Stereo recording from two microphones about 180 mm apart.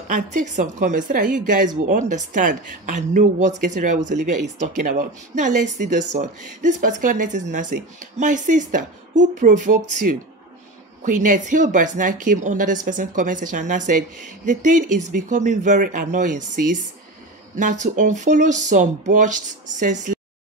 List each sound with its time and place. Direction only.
0.1 s a woman's voice: 45° right (ahead or behind)
8.2 s a woman's voice: 45° right (ahead or behind)
17.6 s a woman's voice: 45° right (ahead or behind)